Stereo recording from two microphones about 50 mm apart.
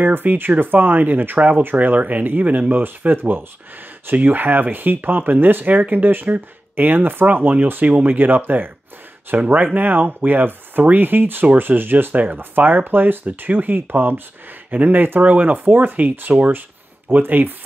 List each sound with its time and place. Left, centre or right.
0.0 s speech: right
7.8 s speech: right
9.3 s speech: right
9.8 s speech: right